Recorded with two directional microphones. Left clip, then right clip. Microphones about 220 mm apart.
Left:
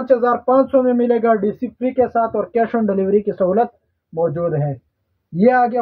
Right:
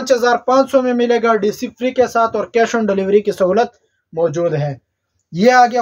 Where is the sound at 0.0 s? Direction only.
5° right (ahead or behind).